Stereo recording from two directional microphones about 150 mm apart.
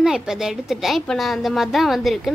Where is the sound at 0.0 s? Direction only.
5° right (ahead or behind).